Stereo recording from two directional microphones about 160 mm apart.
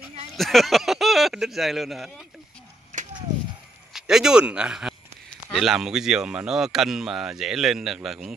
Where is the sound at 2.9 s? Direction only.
50° right (ahead or behind).